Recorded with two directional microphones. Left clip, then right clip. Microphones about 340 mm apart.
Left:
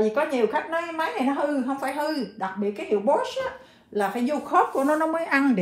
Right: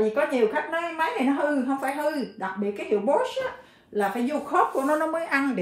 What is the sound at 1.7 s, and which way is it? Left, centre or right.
A woman's voice, centre.